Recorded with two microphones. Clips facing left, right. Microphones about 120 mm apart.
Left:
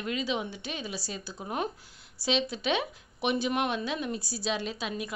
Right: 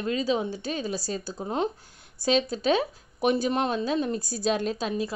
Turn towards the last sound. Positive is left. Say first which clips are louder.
# right 6 dB
turn(degrees=-40)  # may be behind; listen again after turning